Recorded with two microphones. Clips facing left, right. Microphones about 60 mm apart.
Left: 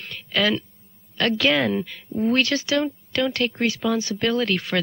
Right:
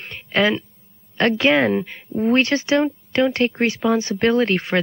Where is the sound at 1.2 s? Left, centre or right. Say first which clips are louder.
Right 4 dB; right.